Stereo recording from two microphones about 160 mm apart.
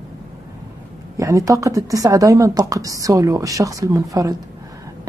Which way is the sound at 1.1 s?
20° right (ahead or behind).